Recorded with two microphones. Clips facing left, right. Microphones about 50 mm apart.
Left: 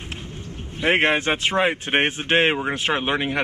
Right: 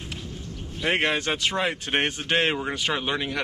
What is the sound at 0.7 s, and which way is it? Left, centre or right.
Speech, left.